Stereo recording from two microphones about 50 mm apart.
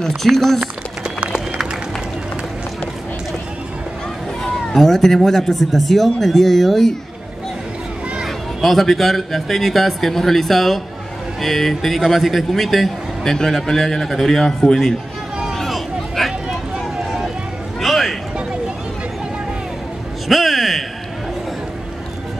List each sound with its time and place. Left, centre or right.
0.2 s a man's voice: centre
1.0 s run: centre
4.4 s a man's voice: centre
8.5 s a man's voice: centre
15.5 s a sound: centre
20.2 s a sound: centre